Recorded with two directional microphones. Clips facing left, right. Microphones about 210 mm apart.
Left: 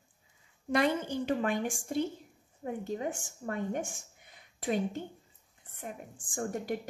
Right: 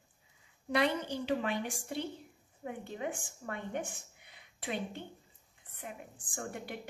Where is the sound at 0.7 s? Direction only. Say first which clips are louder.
Left 3 dB; 45° left (ahead or behind).